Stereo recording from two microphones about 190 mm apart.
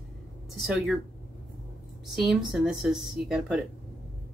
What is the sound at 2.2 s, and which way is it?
Speech, centre (ahead or behind).